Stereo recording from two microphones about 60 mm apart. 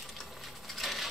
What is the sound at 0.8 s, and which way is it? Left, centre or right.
Coin, centre.